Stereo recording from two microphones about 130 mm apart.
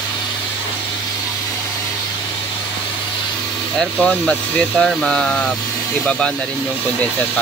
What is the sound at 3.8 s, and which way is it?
Speech, centre (ahead or behind).